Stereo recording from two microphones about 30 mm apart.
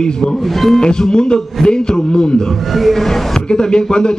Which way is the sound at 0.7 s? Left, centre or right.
Left.